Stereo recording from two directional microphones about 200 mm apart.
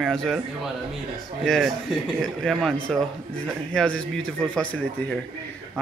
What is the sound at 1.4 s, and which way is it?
A man's voice, centre (ahead or behind).